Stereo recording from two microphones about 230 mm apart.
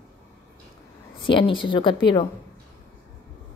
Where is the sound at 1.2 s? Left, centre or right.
Left.